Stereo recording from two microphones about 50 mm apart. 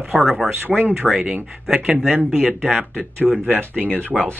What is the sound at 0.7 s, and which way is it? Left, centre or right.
Speech, right.